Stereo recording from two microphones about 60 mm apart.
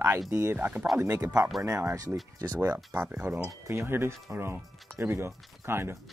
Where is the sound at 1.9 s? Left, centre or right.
Right.